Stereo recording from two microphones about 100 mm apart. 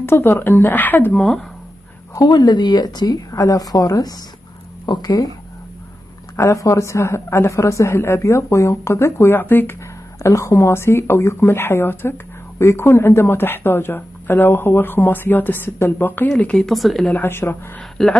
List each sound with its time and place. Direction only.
0.0 s speech: 25° left (ahead or behind)
2.1 s a woman's voice: 45° left (ahead or behind)
6.3 s speech: 30° left (ahead or behind)
10.2 s speech: 30° left (ahead or behind)
16.3 s speech: 10° left (ahead or behind)
17.1 s speech: 20° left (ahead or behind)
18.0 s speech: 5° left (ahead or behind)